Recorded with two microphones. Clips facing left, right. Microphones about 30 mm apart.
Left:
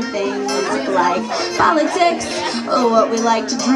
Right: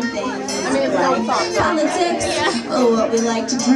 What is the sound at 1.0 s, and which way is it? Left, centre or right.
A woman's voice, centre.